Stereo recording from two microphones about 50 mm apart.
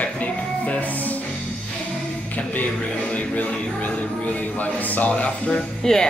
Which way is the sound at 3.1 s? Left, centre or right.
Left.